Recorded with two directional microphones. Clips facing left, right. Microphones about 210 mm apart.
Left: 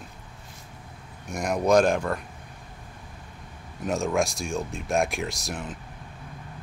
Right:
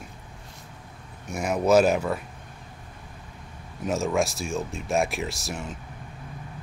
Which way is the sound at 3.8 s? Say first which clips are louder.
Even; centre (ahead or behind).